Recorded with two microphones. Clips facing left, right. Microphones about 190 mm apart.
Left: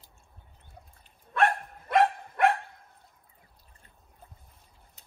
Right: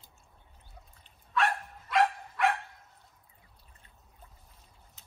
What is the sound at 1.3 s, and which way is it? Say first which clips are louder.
Dog: left 4 dB; 55° left (ahead or behind).